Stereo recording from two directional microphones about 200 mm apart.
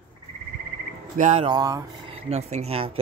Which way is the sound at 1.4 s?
20° right (ahead or behind).